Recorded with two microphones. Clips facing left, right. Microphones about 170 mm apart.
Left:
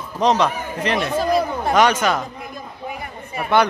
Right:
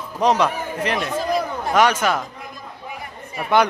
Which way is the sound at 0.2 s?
10° right (ahead or behind).